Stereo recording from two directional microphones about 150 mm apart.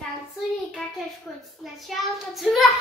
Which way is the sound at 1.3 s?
5° left (ahead or behind).